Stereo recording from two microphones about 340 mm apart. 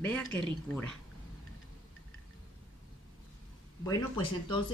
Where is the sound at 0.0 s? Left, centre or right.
Centre.